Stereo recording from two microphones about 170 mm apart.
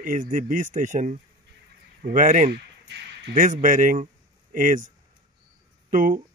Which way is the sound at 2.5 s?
80° right.